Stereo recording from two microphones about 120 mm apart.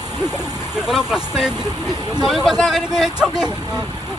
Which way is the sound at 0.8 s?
5° right (ahead or behind).